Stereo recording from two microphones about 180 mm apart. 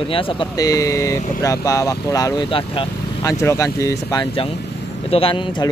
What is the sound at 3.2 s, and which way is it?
Speech, 15° left (ahead or behind).